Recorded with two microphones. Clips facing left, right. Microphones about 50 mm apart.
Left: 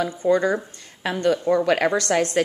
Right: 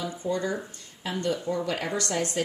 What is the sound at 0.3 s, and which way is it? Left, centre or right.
A woman's voice, left.